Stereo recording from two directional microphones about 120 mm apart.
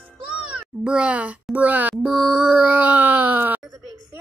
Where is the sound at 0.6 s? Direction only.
10° right (ahead or behind).